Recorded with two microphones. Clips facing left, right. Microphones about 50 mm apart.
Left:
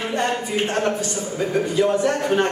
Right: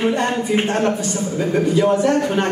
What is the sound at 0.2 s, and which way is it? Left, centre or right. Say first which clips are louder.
Speech: right 3 dB; right.